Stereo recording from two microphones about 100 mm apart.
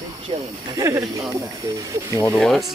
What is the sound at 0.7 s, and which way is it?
Speech, 30° right (ahead or behind).